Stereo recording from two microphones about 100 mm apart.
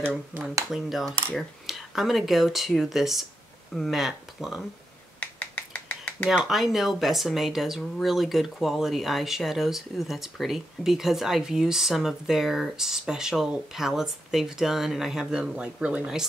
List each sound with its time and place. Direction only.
0.7 s speech: centre (ahead or behind)
5.2 s finger snapping: 15° left (ahead or behind)
6.3 s speech: centre (ahead or behind)